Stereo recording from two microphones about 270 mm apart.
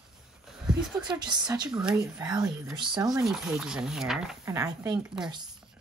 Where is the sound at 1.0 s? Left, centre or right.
Centre.